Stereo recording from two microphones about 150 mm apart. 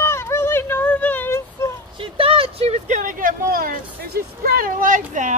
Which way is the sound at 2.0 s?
40° right (ahead or behind).